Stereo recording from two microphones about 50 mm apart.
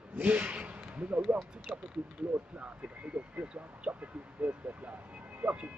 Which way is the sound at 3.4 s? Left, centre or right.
Right.